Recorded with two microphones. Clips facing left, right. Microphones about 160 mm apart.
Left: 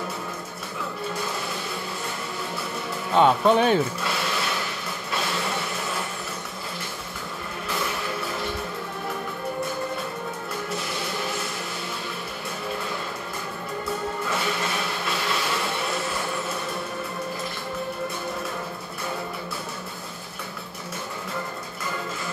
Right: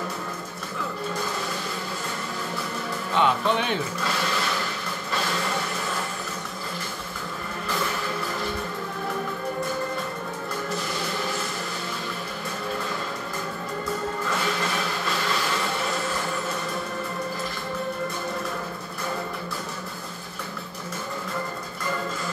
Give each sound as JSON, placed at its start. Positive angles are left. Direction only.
{"t": 3.2, "sound": "speech", "side_deg": 40}